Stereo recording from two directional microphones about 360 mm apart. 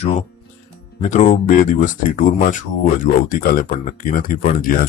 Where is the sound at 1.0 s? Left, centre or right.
Centre.